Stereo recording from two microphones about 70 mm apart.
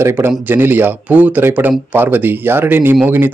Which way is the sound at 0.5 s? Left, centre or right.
Right.